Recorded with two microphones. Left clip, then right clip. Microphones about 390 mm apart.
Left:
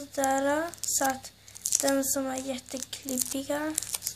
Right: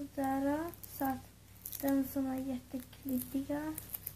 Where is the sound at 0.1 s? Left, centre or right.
Centre.